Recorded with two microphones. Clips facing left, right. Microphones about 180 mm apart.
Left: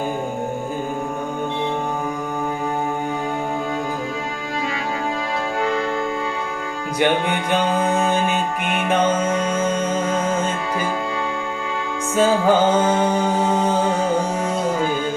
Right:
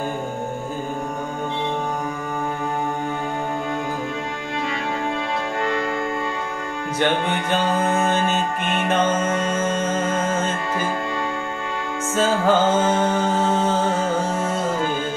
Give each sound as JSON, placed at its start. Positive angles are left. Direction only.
{"t": 5.6, "sound": "music", "side_deg": 0}
{"t": 7.0, "sound": "music", "side_deg": 10}
{"t": 12.2, "sound": "music", "side_deg": 15}